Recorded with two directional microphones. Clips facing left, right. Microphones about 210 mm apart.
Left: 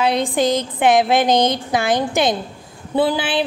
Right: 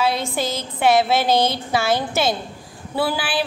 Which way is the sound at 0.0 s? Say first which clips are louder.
Left 5 dB; 15° left (ahead or behind).